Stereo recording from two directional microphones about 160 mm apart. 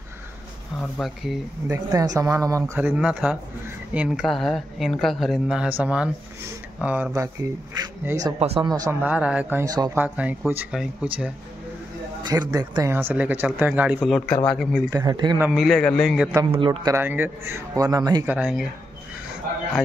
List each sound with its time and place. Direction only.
0.7 s speech: 5° left (ahead or behind)
1.7 s speech: 20° right (ahead or behind)
8.4 s speech: 40° right (ahead or behind)
8.6 s speech: 25° right (ahead or behind)
9.0 s speech: 10° right (ahead or behind)
9.9 s speech: 10° right (ahead or behind)
12.2 s speech: 25° right (ahead or behind); by 14.8 s centre (ahead or behind)
14.9 s speech: 25° right (ahead or behind)
15.5 s speech: centre (ahead or behind)
16.5 s speech: 30° right (ahead or behind)
16.9 s speech: 10° right (ahead or behind)
18.2 s speech: 10° right (ahead or behind)